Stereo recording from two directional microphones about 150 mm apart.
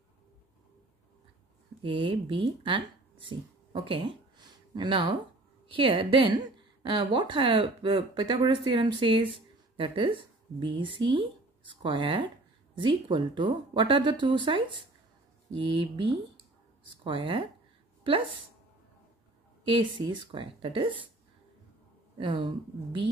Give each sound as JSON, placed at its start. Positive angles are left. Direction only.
{"t": 1.8, "sound": "a woman's voice", "side_deg": -35}
{"t": 19.7, "sound": "a woman's voice", "side_deg": -35}
{"t": 22.2, "sound": "a woman's voice", "side_deg": -30}